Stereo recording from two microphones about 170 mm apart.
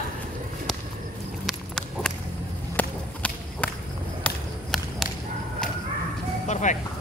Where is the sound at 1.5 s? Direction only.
5° left (ahead or behind).